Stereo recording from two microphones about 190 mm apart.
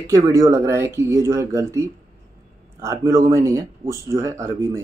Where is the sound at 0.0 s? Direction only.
15° right (ahead or behind).